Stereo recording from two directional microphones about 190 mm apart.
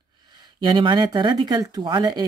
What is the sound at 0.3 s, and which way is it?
Speech, 25° right (ahead or behind).